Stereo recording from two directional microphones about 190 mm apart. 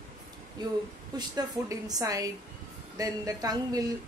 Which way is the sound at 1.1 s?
20° right (ahead or behind).